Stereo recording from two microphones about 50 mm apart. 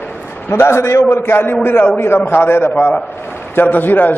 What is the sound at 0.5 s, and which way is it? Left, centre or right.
A man's voice, left.